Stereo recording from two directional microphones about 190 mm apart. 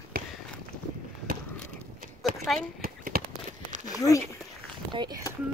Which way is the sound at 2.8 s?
50° right (ahead or behind).